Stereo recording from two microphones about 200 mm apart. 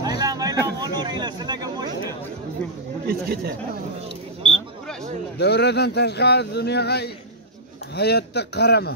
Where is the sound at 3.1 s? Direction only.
50° right (ahead or behind).